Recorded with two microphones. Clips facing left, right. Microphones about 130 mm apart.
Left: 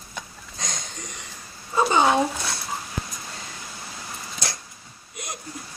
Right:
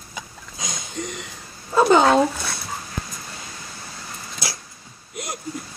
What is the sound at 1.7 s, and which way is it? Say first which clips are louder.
Speech: right 5 dB; 80° right.